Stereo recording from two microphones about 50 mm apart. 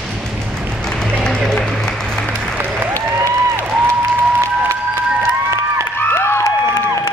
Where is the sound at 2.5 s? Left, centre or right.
Right.